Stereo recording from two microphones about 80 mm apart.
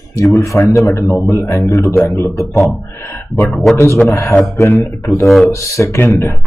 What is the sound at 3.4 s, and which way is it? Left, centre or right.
Speech, centre.